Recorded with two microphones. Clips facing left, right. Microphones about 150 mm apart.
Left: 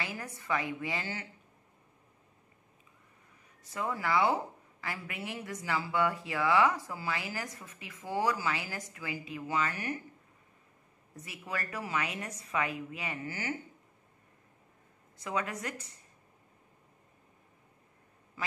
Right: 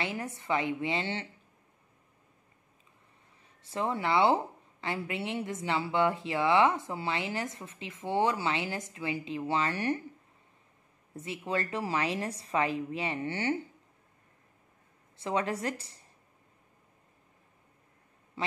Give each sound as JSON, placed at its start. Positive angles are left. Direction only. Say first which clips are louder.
{"t": 0.0, "sound": "a woman's voice", "louder": "right 5 dB", "side_deg": -25}
{"t": 3.6, "sound": "a woman's voice", "louder": "right 3 dB", "side_deg": -25}
{"t": 11.1, "sound": "a woman's voice", "louder": "right 7 dB", "side_deg": -25}
{"t": 15.1, "sound": "a woman's voice", "louder": "right 4 dB", "side_deg": -30}